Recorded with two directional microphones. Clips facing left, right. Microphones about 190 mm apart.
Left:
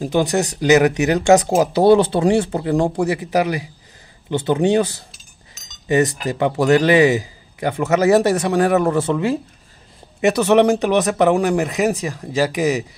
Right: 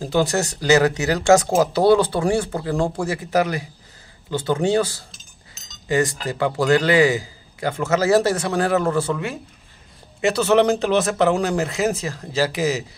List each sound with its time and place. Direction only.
0.0 s a man's voice: 15° left (ahead or behind)